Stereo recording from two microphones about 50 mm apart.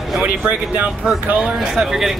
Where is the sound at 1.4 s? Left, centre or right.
Centre.